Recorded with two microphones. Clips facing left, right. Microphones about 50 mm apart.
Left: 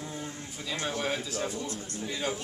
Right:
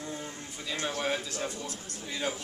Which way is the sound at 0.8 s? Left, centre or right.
Centre.